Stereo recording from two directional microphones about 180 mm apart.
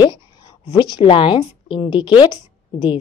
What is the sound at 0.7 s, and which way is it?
Speech, 25° left (ahead or behind).